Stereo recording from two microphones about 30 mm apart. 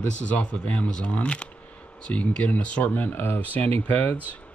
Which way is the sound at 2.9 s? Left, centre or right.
Left.